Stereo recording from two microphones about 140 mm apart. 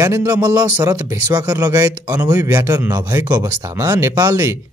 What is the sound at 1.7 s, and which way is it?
Speech, 15° right (ahead or behind).